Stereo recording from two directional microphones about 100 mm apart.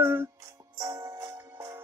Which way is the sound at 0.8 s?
40° right (ahead or behind).